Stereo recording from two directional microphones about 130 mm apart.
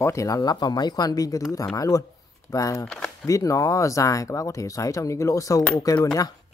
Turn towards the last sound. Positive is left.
turn(degrees=25)  # may be behind; listen again after turning